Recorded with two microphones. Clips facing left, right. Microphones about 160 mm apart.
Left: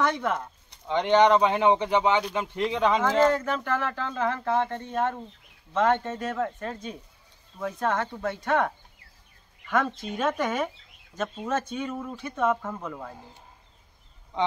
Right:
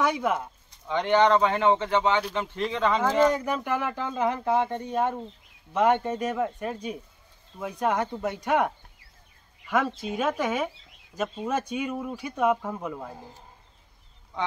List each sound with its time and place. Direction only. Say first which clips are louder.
0.0 s speech: right 1 dB; 10° right (ahead or behind)
0.8 s speech: left 1 dB; 15° left (ahead or behind)
3.0 s speech: right 2 dB; 15° right (ahead or behind)